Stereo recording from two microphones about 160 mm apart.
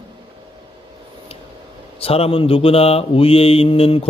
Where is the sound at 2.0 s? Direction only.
35° left (ahead or behind).